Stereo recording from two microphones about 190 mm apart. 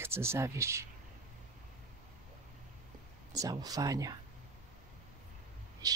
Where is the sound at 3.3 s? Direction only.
20° right (ahead or behind).